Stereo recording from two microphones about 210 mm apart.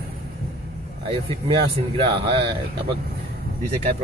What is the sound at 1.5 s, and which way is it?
Speech, 25° right (ahead or behind).